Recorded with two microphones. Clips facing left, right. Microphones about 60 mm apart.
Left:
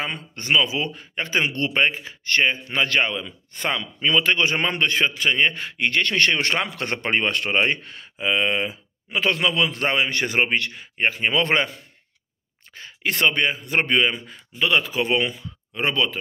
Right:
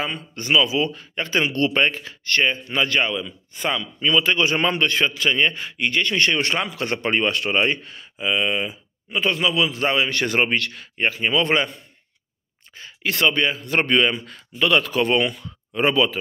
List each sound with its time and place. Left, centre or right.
0.4 s a man's voice: left
5.5 s a man's voice: left
9.9 s a man's voice: left
11.1 s a man's voice: left
12.7 s speech: left; by 15.4 s centre
15.7 s speech: centre